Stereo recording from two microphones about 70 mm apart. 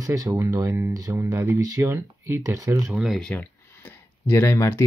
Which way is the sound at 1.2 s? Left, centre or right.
Right.